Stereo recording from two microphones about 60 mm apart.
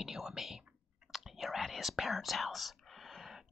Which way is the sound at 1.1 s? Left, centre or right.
Centre.